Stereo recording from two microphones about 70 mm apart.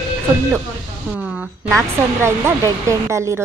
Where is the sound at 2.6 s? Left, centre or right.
Right.